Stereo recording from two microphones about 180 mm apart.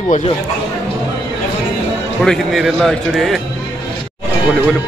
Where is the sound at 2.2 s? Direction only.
Centre (ahead or behind).